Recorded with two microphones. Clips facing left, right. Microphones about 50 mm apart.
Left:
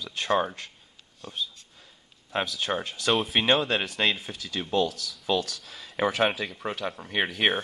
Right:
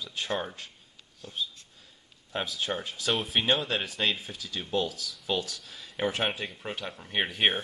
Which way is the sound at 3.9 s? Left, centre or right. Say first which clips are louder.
Left 3 dB; left.